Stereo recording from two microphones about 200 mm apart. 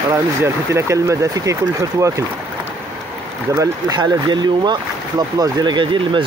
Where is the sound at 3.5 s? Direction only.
20° right (ahead or behind).